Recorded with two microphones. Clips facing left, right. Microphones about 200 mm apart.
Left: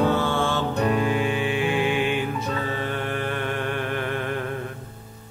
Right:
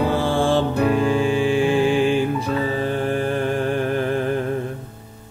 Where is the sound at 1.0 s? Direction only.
30° right (ahead or behind).